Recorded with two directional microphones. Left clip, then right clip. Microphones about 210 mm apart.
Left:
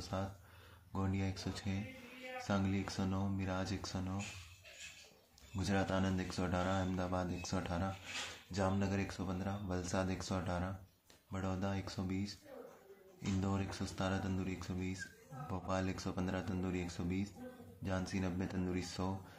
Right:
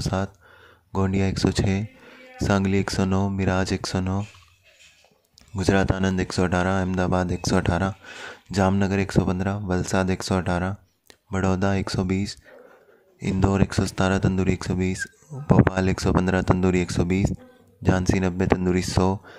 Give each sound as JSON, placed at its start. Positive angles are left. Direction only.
{"t": 0.0, "sound": "speech", "side_deg": -50}
{"t": 5.6, "sound": "speech", "side_deg": -50}